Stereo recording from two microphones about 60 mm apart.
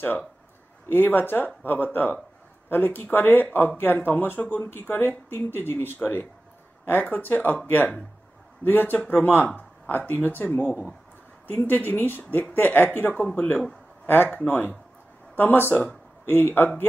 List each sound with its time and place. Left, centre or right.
0.9 s speech: left